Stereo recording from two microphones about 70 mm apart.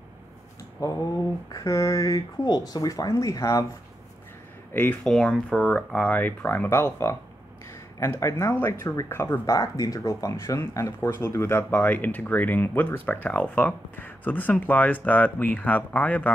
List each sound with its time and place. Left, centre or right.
0.8 s speech: left
2.4 s speech: left
3.2 s speech: left
5.0 s speech: centre
6.0 s speech: left
6.7 s speech: left
8.8 s speech: left
9.5 s speech: left
10.3 s speech: left
11.7 s speech: left